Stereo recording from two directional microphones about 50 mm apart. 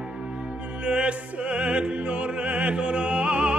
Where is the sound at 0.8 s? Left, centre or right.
Right.